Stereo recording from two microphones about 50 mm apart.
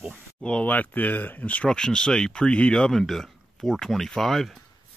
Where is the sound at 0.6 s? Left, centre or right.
Left.